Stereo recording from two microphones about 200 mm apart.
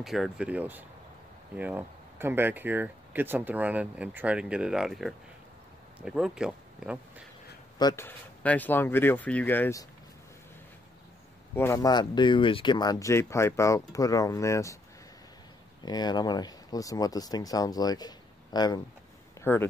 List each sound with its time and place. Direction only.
0.0 s speech: centre (ahead or behind)
7.8 s speech: 10° left (ahead or behind)
11.5 s speech: 15° left (ahead or behind)
15.8 s speech: 20° left (ahead or behind)